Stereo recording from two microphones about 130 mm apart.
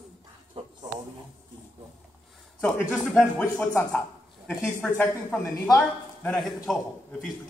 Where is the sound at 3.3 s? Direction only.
10° left (ahead or behind).